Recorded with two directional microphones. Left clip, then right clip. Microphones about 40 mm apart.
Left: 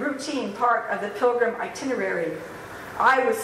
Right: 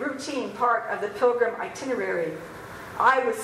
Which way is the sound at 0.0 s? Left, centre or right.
Centre.